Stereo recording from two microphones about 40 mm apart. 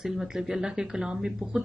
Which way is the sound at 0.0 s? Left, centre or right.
Centre.